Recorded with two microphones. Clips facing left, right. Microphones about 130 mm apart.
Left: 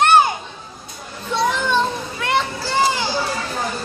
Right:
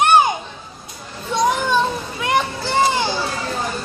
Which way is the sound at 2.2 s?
20° right (ahead or behind).